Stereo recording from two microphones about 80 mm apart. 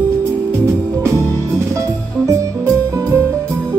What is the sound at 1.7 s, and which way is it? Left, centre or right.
Music, right.